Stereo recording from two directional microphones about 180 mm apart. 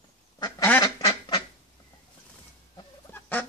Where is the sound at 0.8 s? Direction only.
20° left (ahead or behind).